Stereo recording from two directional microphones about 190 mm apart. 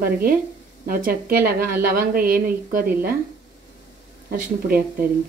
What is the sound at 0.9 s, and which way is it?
A woman's voice, 50° right (ahead or behind).